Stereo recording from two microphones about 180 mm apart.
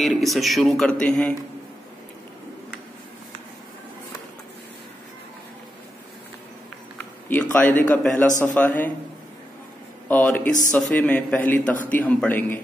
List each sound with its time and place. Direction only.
0.0 s speech: centre (ahead or behind)
7.2 s speech: 10° left (ahead or behind)
10.0 s speech: 10° left (ahead or behind)